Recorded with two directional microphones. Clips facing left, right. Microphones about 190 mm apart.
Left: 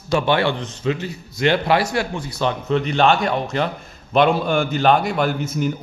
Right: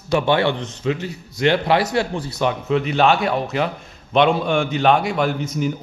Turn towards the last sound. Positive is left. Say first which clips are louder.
# even
turn(degrees=5)  # may be behind; listen again after turning